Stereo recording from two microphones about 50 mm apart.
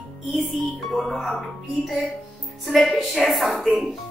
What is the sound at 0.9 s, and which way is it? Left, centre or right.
Speech, centre.